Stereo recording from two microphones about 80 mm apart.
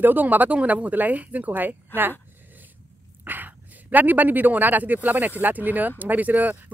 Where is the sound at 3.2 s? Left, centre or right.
Right.